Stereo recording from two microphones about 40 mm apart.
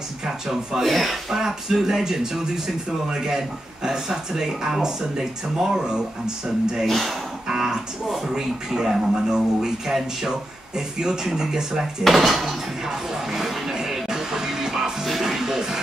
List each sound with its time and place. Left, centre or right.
0.2 s speech: centre
6.9 s speech: centre
7.4 s speech: centre
11.0 s speech: centre
12.0 s speech: centre
12.8 s music: centre